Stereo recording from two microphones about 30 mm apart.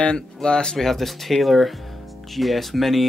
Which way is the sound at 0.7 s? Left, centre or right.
Centre.